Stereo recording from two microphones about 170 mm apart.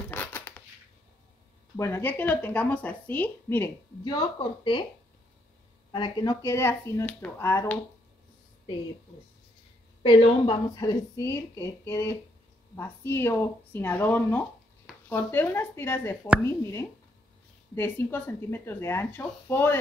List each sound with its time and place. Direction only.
0.1 s a sound: 10° left (ahead or behind)
1.8 s speech: 15° left (ahead or behind)
4.0 s a woman's voice: 25° left (ahead or behind)
5.9 s speech: 25° left (ahead or behind)
10.0 s a woman's voice: 30° left (ahead or behind)
11.1 s speech: 15° left (ahead or behind)
17.7 s speech: 10° left (ahead or behind)